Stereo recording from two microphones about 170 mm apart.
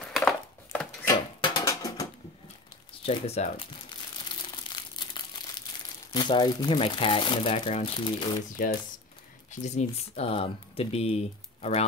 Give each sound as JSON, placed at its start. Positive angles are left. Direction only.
{"t": 0.0, "sound": "a sound", "side_deg": 5}
{"t": 1.0, "sound": "a sound", "side_deg": 25}
{"t": 3.2, "sound": "speech", "side_deg": 35}
{"t": 4.7, "sound": "crumpling", "side_deg": 25}
{"t": 6.1, "sound": "speech", "side_deg": 25}
{"t": 9.5, "sound": "speech", "side_deg": 45}